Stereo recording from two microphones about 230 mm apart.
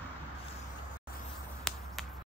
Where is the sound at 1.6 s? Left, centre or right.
Centre.